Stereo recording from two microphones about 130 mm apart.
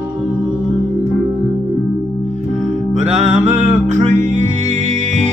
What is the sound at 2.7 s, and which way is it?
Music, 65° right (ahead or behind).